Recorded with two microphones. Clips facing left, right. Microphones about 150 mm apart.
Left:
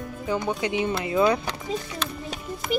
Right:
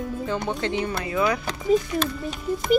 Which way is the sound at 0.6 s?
15° left (ahead or behind).